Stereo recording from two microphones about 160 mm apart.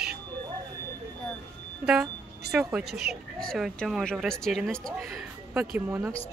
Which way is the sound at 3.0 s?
75° right (ahead or behind).